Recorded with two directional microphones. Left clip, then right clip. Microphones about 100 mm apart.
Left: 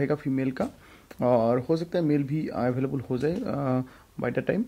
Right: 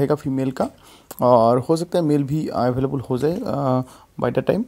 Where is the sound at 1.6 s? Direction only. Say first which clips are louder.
Right 6 dB; 55° right (ahead or behind).